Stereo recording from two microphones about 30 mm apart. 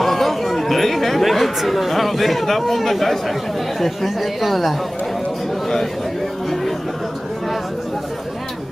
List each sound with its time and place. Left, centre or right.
0.0 s speech: centre